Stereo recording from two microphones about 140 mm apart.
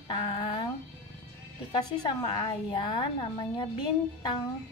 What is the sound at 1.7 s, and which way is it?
Speech, 30° left (ahead or behind).